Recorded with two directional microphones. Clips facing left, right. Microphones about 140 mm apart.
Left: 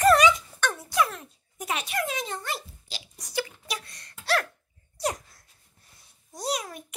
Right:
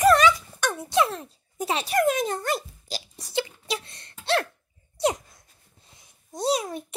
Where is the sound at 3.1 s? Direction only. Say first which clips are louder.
Right 2 dB; 25° right (ahead or behind).